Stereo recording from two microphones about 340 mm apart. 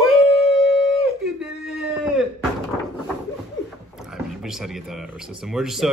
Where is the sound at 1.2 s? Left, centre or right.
Centre.